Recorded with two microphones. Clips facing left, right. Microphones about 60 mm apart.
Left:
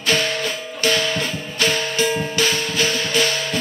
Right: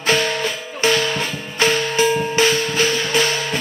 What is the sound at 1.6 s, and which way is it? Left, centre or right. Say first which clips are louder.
Music: right 3 dB; right.